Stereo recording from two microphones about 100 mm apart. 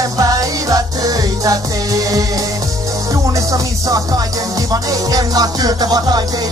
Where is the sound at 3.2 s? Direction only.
35° right (ahead or behind).